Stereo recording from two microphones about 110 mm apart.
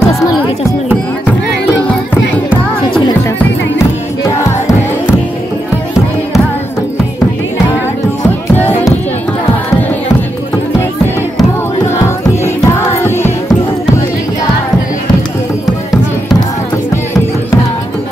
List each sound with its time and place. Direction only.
8.5 s music: 15° left (ahead or behind)
12.6 s music: 25° left (ahead or behind)